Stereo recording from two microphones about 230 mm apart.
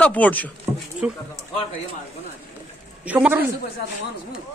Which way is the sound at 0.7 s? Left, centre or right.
Centre.